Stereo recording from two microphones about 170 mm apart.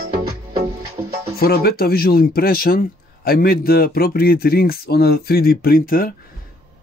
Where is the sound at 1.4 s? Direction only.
60° left (ahead or behind).